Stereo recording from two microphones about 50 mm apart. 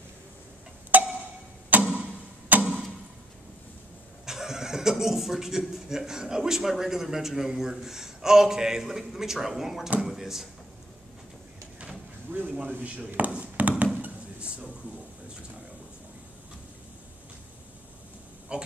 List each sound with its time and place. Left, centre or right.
0.9 s a sound: right
1.7 s tick-tock: right
2.5 s clock: right
4.3 s chuckle: centre
5.6 s a man's voice: centre
12.3 s a man's voice: right
18.5 s speech: centre